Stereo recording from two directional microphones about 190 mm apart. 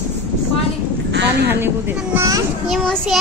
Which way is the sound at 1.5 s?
10° right (ahead or behind).